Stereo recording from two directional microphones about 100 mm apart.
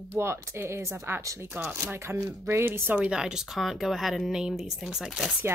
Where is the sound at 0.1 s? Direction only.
25° right (ahead or behind).